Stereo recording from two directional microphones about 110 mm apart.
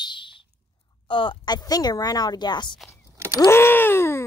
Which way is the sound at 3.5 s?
20° left (ahead or behind).